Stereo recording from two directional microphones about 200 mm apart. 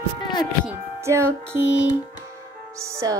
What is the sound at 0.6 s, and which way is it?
Music, 15° right (ahead or behind).